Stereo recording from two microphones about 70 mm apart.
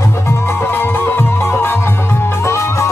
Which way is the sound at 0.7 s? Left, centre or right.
Left.